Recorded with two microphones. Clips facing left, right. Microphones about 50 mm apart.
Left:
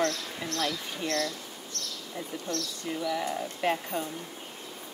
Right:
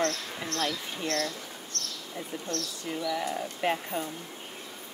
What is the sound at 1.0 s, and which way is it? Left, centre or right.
Speech, right.